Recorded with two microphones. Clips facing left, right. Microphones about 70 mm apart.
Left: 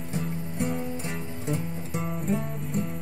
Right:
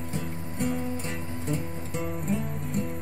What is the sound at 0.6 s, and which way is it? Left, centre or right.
Music, centre.